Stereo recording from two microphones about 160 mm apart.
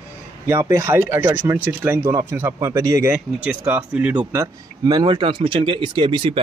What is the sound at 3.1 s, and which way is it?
A man's voice, 10° right (ahead or behind).